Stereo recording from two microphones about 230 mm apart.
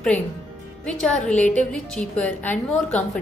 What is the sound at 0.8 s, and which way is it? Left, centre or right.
A woman's voice, centre.